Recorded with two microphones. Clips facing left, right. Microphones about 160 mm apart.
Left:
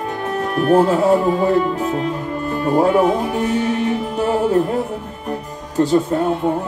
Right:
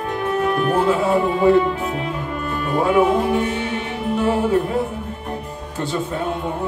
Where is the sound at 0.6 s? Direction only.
40° left (ahead or behind).